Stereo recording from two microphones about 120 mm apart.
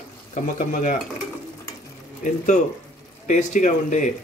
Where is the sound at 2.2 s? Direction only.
90° left.